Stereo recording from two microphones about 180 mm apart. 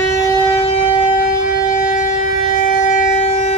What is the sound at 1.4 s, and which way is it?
Siren, 45° left (ahead or behind).